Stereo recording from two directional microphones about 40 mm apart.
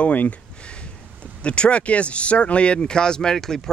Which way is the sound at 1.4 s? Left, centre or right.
Left.